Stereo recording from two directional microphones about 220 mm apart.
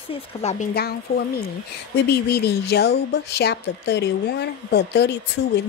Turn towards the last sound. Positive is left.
turn(degrees=50)  # may be behind; listen again after turning